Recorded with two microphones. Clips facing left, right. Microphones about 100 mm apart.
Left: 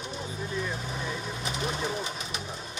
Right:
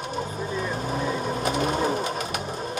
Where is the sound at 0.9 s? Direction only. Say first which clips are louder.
Right 8 dB; 45° right (ahead or behind).